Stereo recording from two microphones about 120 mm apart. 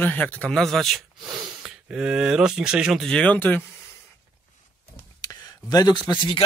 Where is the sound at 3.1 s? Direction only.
10° left (ahead or behind).